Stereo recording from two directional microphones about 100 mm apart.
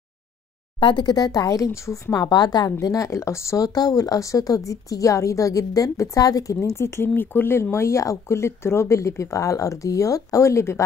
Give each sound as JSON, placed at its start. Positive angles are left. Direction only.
{"t": 0.7, "sound": "speech", "side_deg": 50}